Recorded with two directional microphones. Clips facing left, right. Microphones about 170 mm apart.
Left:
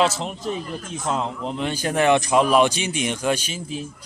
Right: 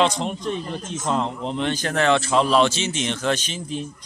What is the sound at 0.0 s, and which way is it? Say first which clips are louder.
A man's voice: right 1 dB; 5° left (ahead or behind).